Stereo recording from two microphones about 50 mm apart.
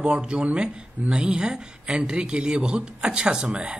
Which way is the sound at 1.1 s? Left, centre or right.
Centre.